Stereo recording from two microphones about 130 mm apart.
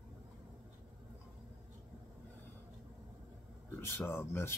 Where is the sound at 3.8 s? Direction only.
20° left (ahead or behind).